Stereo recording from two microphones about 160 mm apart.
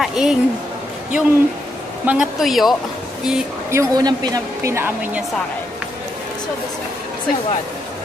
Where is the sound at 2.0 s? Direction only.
5° right (ahead or behind).